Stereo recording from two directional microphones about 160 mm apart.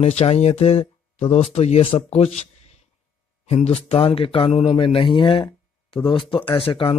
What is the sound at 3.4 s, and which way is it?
Speech, 40° left (ahead or behind).